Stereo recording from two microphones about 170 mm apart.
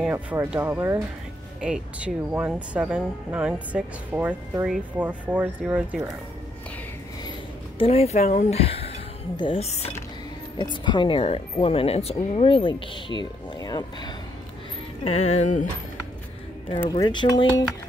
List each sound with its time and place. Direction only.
0.0 s speech: 10° right (ahead or behind)
7.8 s speech: 35° left (ahead or behind)
10.6 s speech: 25° left (ahead or behind)
15.0 s speech: 40° left (ahead or behind)
16.9 s speech: 25° left (ahead or behind)